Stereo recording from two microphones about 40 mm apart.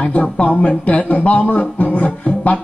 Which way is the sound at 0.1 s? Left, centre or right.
Left.